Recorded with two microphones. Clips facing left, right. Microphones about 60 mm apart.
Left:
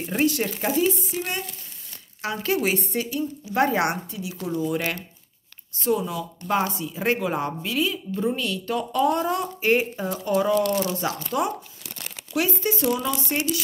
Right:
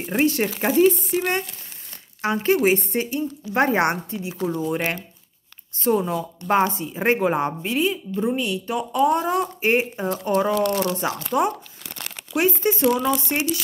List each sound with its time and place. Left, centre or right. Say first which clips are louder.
0.0 s speech: right 2 dB; right
2.2 s speech: right 5 dB; right
10.5 s speech: right 1 dB; right
11.3 s speech: right 6 dB; right